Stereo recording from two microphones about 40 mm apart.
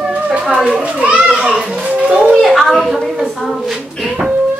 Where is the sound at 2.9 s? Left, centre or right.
Centre.